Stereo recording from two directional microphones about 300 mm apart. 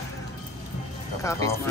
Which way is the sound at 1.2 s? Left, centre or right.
Centre.